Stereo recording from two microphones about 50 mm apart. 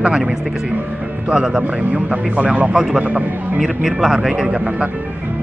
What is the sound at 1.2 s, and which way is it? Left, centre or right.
Speech, centre.